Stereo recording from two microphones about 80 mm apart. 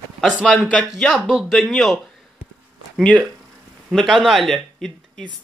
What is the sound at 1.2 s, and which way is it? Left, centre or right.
Speech, centre.